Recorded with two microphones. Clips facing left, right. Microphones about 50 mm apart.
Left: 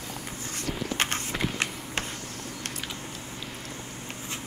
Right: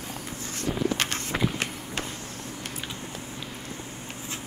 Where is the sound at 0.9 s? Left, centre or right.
Left.